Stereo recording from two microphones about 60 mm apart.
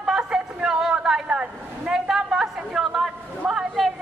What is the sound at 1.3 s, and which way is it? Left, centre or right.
Vehicle, centre.